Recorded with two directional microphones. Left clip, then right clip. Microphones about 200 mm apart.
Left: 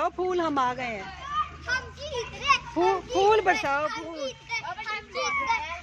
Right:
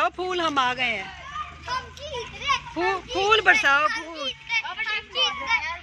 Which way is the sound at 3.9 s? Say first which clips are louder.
Right 5 dB; 60° left (ahead or behind).